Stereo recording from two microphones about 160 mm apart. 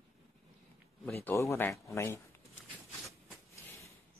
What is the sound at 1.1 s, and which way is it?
Speech, 15° left (ahead or behind).